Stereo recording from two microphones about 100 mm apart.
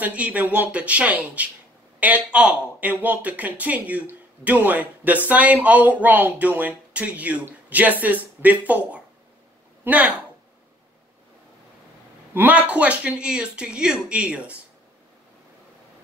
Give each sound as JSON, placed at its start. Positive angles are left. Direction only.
{"t": 0.0, "sound": "speech", "side_deg": -15}
{"t": 12.4, "sound": "speech", "side_deg": -15}